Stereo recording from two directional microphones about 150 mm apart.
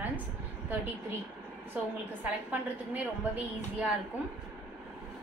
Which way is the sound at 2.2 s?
10° right (ahead or behind).